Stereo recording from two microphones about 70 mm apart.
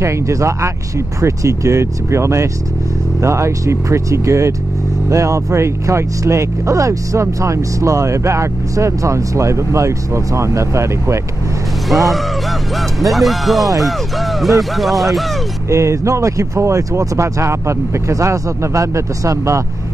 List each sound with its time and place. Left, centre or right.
0.0 s speech: right
11.9 s speech: centre
15.7 s speech: right